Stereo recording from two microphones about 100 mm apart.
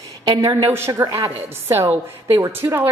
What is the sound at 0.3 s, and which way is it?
Speech, 45° right (ahead or behind).